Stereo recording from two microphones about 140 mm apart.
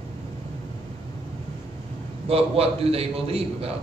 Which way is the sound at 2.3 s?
45° right (ahead or behind).